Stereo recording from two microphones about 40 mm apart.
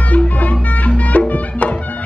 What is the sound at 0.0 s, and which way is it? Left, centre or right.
Music, left.